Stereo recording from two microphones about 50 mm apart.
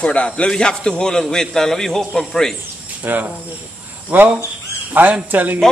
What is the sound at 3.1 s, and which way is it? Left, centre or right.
Speech, right.